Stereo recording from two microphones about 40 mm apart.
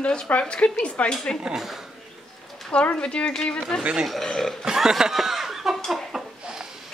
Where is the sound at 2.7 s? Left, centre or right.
Left.